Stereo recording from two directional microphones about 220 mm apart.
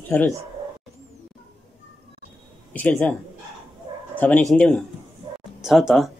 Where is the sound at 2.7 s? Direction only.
5° left (ahead or behind).